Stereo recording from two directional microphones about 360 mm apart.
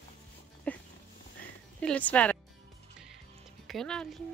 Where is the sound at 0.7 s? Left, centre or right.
Centre.